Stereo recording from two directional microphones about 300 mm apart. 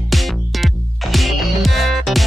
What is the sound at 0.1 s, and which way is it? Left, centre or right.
Music, centre.